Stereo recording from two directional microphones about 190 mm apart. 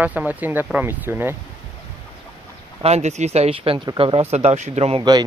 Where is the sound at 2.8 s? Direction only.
35° right (ahead or behind).